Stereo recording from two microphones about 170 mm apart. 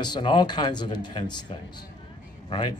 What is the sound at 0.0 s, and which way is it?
A man's voice, 25° left (ahead or behind).